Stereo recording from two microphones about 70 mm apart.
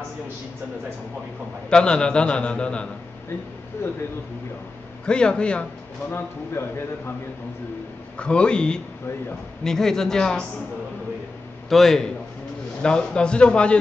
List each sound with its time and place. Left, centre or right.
1.7 s a man's voice: centre
3.8 s a man's voice: left
5.0 s a man's voice: centre
6.6 s a man's voice: left
8.2 s a man's voice: centre
11.7 s a man's voice: centre